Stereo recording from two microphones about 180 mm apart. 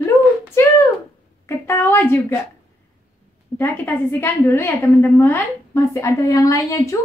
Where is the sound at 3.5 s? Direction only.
10° left (ahead or behind).